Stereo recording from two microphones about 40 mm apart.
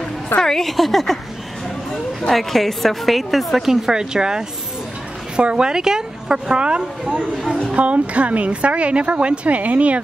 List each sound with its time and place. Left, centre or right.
0.4 s a woman's voice: centre
0.7 s a woman's voice: centre
2.2 s a woman's voice: centre; by 9.9 s right